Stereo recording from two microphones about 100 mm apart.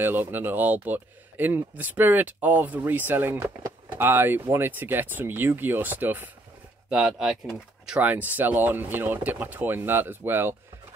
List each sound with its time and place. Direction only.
0.0 s speech: 20° right (ahead or behind)
6.9 s speech: 5° right (ahead or behind); by 10.5 s 20° right (ahead or behind)